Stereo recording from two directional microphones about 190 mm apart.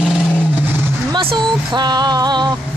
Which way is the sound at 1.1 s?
25° right (ahead or behind).